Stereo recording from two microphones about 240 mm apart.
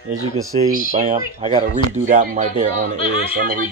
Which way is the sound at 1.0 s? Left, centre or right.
Right.